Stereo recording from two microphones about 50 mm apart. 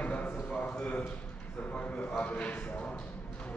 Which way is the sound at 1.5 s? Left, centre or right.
Left.